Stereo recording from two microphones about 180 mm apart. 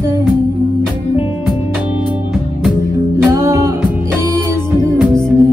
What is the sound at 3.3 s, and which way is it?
Music, 15° right (ahead or behind).